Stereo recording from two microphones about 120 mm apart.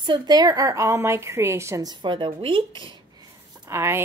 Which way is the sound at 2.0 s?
45° right (ahead or behind).